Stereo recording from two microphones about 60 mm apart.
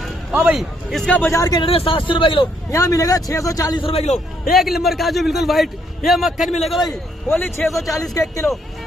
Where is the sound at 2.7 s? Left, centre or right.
Left.